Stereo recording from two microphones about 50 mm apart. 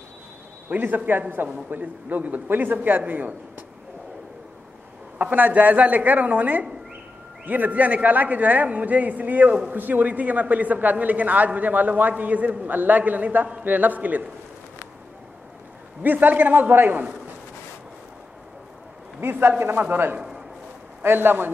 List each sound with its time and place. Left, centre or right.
0.7 s a man's voice: right
5.2 s a man's voice: right
16.0 s a man's voice: right
19.9 s a man's voice: right
20.2 s a sound: centre
21.0 s a man's voice: right